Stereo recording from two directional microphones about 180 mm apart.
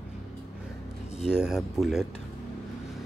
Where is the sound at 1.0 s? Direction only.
35° left (ahead or behind).